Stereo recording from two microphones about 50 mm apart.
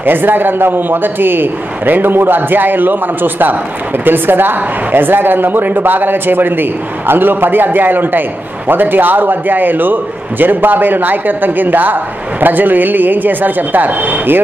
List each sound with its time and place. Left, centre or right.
0.0 s a man's voice: right